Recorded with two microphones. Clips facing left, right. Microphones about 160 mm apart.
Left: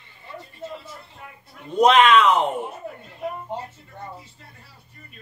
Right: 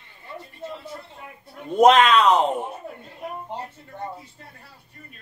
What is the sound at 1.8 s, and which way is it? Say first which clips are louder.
Speech: even; 40° right (ahead or behind).